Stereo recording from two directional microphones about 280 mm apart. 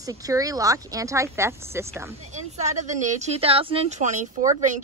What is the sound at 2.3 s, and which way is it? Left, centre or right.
Speech, right.